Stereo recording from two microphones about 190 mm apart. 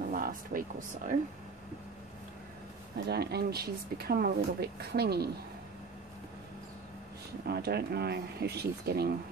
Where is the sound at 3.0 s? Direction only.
60° right (ahead or behind).